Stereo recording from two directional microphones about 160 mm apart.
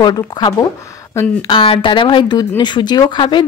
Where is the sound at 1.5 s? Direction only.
35° left (ahead or behind).